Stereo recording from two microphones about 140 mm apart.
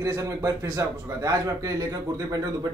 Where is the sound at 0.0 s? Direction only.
25° right (ahead or behind).